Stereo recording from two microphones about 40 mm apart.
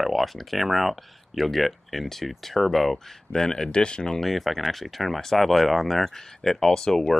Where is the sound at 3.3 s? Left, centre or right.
Centre.